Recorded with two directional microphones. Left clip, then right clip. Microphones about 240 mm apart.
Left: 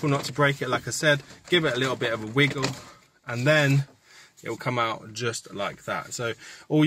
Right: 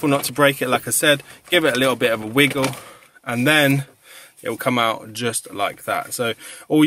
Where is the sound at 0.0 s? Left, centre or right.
Right.